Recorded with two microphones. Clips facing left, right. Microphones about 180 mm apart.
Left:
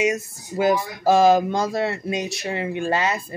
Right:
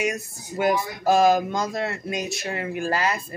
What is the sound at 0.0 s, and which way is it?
Speech, 25° left (ahead or behind).